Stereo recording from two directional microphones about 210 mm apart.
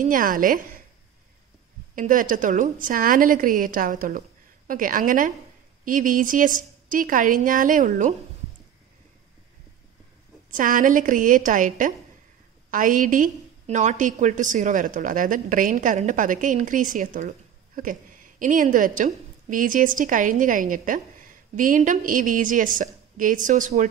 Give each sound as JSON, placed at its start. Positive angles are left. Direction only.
{"t": 0.0, "sound": "a woman's voice", "side_deg": -40}
{"t": 2.0, "sound": "a woman's voice", "side_deg": -40}
{"t": 10.5, "sound": "a woman's voice", "side_deg": -40}